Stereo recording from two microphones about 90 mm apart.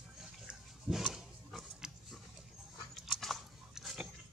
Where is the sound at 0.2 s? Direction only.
5° right (ahead or behind).